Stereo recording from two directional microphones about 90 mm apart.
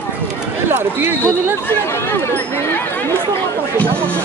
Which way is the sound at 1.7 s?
25° left (ahead or behind).